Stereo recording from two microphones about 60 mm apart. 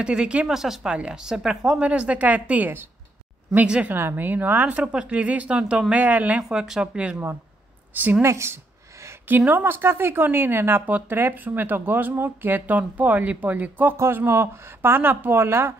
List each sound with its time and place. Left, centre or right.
0.0 s speech: centre
0.5 s speech: centre
1.8 s speech: right
3.6 s speech: centre
3.9 s speech: right
6.5 s speech: centre
8.2 s speech: right
9.5 s speech: right
13.9 s speech: right